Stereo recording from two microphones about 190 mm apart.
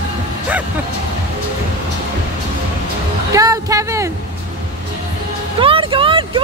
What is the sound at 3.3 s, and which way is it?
Speech, 15° right (ahead or behind).